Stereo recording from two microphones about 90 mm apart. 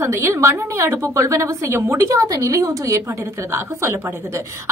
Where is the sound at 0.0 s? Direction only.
30° right (ahead or behind).